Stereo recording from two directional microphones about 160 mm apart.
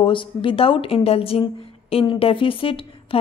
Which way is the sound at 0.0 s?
30° left (ahead or behind).